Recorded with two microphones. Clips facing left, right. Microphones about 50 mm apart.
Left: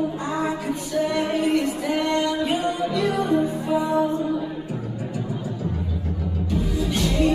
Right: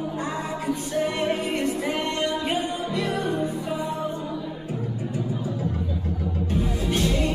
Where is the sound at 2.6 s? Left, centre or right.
Left.